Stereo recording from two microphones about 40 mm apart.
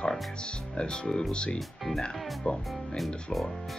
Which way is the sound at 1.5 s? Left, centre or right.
Centre.